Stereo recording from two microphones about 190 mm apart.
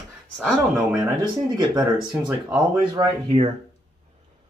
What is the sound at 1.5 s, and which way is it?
Speech, 20° right (ahead or behind).